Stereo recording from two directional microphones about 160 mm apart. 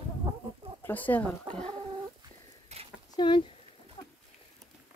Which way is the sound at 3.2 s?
30° left (ahead or behind).